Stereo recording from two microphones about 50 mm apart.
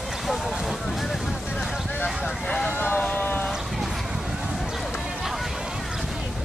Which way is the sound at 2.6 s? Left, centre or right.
Left.